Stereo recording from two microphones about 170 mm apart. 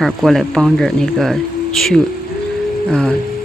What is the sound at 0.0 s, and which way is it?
Speech, centre (ahead or behind).